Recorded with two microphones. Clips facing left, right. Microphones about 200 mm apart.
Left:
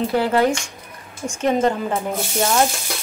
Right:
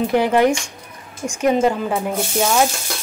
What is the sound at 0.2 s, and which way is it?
Speech, 15° right (ahead or behind).